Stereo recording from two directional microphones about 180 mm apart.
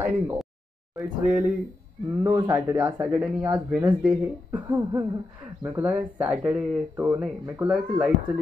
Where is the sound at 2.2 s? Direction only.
20° right (ahead or behind).